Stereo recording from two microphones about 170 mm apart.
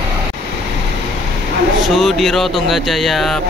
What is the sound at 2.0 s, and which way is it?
Speech, centre (ahead or behind).